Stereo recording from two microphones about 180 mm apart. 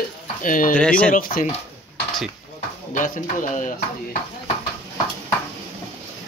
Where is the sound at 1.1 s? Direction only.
50° left (ahead or behind).